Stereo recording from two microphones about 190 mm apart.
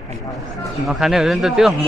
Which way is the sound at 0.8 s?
Centre (ahead or behind).